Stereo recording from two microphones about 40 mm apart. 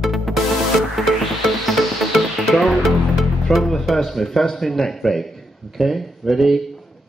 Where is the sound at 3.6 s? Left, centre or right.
Centre.